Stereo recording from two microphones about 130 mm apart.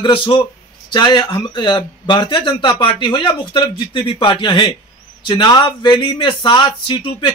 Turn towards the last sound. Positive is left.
turn(degrees=40)  # may be behind; listen again after turning